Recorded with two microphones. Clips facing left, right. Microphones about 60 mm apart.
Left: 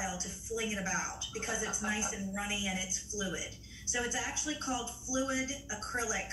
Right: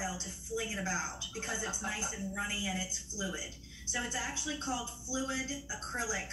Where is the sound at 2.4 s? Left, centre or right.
Left.